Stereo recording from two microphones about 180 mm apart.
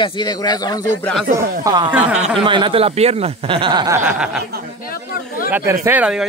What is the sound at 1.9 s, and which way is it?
Speech, 10° right (ahead or behind).